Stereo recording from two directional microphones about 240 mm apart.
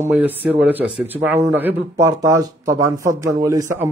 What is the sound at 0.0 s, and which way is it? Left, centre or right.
Speech, centre.